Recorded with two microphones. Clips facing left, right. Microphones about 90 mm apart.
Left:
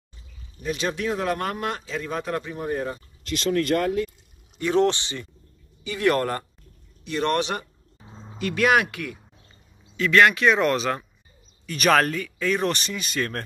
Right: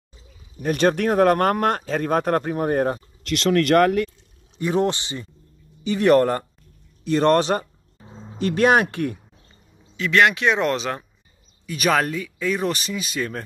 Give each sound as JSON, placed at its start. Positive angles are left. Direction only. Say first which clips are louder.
{"t": 0.6, "sound": "speech", "louder": "right 8 dB", "side_deg": -55}
{"t": 3.3, "sound": "speech", "louder": "right 4 dB", "side_deg": -85}
{"t": 4.6, "sound": "speech", "louder": "left 1 dB", "side_deg": -15}
{"t": 7.1, "sound": "speech", "louder": "right 7 dB", "side_deg": -35}
{"t": 9.9, "sound": "speech", "louder": "even", "side_deg": -25}
{"t": 11.6, "sound": "speech", "louder": "left 1 dB", "side_deg": -5}